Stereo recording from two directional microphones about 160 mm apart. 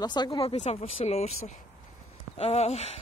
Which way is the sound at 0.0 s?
25° left (ahead or behind).